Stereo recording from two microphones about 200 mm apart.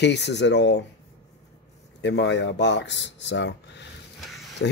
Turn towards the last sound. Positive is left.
turn(degrees=65)  # may be behind; listen again after turning